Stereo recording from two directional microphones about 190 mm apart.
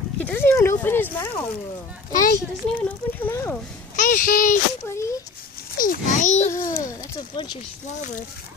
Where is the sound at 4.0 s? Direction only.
45° left (ahead or behind).